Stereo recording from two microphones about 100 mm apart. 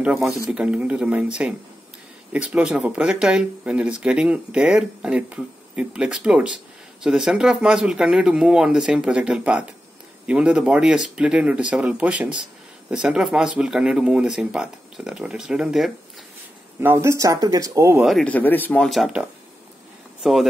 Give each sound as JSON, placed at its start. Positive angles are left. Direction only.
{"t": 0.0, "sound": "speech", "side_deg": -5}
{"t": 16.8, "sound": "speech", "side_deg": -25}
{"t": 18.2, "sound": "speech", "side_deg": 15}
{"t": 18.9, "sound": "speech", "side_deg": 0}
{"t": 20.2, "sound": "speech", "side_deg": 0}